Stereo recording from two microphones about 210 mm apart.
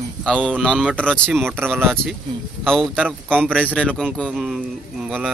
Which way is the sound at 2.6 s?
Centre (ahead or behind).